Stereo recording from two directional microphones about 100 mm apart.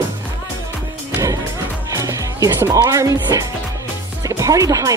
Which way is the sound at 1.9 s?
35° right (ahead or behind).